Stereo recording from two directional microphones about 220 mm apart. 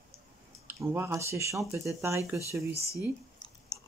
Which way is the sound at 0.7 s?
10° right (ahead or behind).